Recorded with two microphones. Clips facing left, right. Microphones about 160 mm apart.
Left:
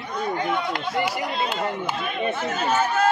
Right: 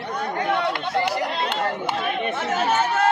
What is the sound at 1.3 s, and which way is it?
Speech, 70° right (ahead or behind).